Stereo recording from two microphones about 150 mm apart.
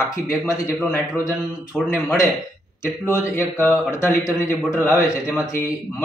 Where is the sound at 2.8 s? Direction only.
20° left (ahead or behind).